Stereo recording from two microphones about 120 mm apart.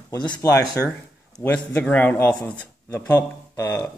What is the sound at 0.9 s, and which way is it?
Speech, 10° left (ahead or behind).